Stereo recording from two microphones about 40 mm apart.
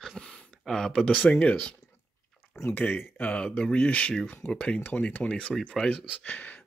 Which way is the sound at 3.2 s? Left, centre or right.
Left.